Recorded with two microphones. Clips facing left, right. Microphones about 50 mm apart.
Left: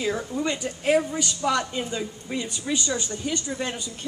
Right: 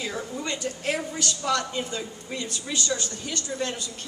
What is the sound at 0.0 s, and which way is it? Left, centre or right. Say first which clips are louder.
A woman's voice: left 5 dB; centre.